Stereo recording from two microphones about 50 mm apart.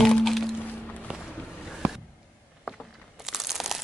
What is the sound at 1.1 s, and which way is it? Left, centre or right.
Music, right.